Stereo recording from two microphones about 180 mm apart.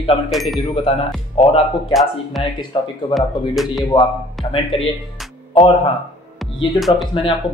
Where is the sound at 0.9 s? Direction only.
30° left (ahead or behind).